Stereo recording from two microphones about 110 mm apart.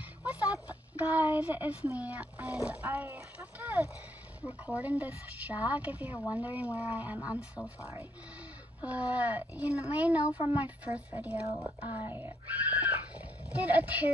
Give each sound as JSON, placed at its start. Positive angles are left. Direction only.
{"t": 0.2, "sound": "speech", "side_deg": -10}
{"t": 8.8, "sound": "speech", "side_deg": -15}